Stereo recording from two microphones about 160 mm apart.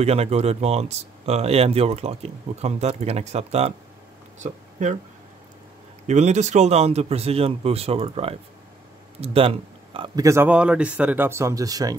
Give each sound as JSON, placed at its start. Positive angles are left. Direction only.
{"t": 0.0, "sound": "speech", "side_deg": -40}
{"t": 6.0, "sound": "speech", "side_deg": -45}